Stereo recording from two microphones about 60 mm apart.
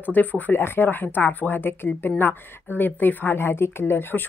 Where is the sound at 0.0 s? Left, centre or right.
Left.